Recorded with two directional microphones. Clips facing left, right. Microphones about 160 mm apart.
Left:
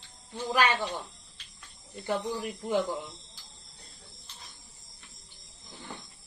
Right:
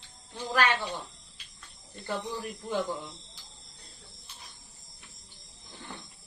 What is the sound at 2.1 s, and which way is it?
Speech, 15° left (ahead or behind).